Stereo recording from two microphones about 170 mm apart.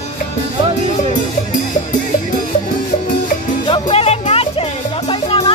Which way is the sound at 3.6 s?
30° left (ahead or behind).